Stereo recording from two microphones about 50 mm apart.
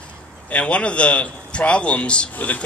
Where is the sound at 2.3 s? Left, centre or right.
Left.